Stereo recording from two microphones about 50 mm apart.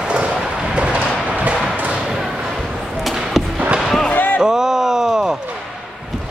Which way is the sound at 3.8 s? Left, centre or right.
Centre.